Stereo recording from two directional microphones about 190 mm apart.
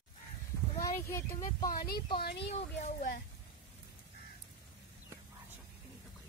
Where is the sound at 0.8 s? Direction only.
15° left (ahead or behind).